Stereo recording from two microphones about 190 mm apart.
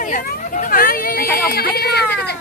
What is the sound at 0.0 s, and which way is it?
Speech, 45° left (ahead or behind).